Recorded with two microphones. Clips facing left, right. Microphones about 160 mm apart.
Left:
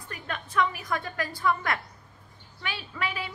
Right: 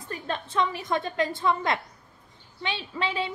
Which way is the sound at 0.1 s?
25° right (ahead or behind).